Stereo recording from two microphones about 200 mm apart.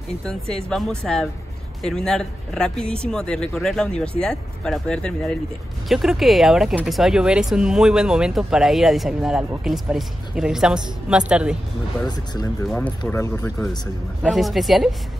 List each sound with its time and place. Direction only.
0.3 s speech: 5° left (ahead or behind)
12.6 s speech: 5° left (ahead or behind)
14.2 s speech: centre (ahead or behind)